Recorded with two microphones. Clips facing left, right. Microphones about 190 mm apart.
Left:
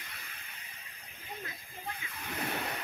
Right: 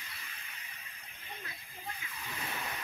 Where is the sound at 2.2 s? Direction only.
65° left (ahead or behind).